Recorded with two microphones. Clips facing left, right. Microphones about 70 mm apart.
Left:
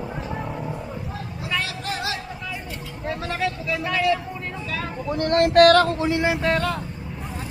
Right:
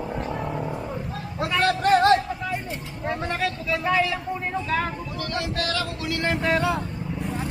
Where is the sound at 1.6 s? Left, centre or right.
Right.